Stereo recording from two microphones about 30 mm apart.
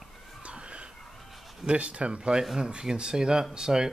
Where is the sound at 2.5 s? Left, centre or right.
Right.